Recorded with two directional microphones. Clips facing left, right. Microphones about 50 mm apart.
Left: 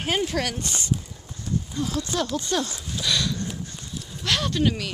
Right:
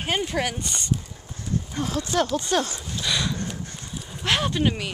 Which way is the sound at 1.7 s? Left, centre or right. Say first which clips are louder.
Right 2 dB; right.